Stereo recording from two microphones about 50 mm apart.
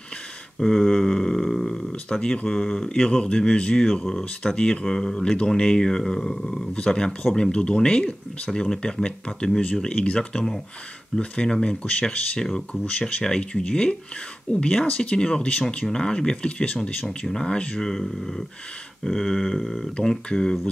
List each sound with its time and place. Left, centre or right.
0.6 s a sound: centre
1.7 s speech: centre
12.4 s speech: centre